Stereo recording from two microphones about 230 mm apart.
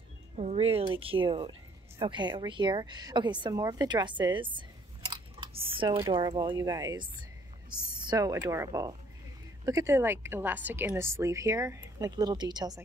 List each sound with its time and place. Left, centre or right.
0.4 s a woman's voice: right